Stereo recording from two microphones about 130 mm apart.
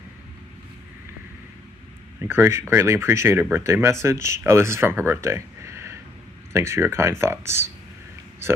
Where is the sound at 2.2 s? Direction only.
15° right (ahead or behind).